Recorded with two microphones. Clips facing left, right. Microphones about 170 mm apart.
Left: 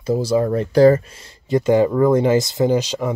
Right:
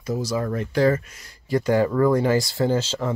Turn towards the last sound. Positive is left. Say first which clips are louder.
# left 4 dB
turn(degrees=15)  # may be behind; listen again after turning